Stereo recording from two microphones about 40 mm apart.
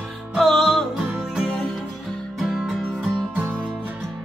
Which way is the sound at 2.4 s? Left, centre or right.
Centre.